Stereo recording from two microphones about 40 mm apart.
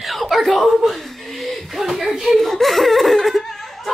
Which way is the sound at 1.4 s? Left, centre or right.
Centre.